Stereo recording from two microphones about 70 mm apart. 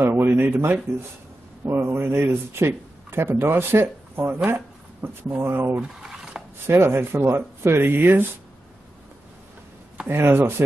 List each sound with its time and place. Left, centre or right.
0.0 s speech: right
5.8 s a sound: centre
6.6 s speech: right
10.0 s speech: right